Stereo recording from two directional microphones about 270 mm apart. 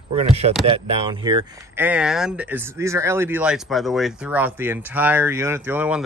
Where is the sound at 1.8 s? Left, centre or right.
Centre.